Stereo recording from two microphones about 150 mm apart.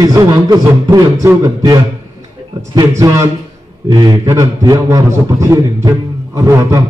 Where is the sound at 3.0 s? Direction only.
20° right (ahead or behind).